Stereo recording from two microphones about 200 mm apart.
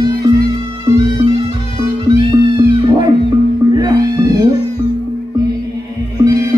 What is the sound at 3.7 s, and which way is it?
Music, 20° right (ahead or behind).